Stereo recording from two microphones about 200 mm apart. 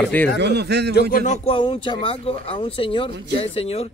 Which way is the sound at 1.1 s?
35° left (ahead or behind).